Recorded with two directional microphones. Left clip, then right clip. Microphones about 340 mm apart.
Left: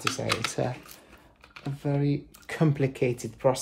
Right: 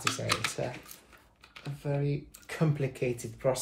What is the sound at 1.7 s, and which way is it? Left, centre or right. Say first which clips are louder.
Speech: left 5 dB; left.